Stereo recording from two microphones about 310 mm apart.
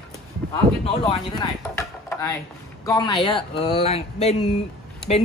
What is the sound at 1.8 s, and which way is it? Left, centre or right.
Speech, centre.